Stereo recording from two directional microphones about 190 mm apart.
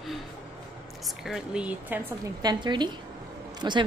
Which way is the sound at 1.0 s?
Centre (ahead or behind).